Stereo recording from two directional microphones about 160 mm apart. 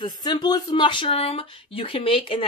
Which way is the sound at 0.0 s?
25° left (ahead or behind).